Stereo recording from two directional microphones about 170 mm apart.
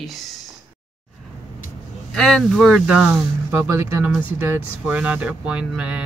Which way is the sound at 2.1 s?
Centre (ahead or behind).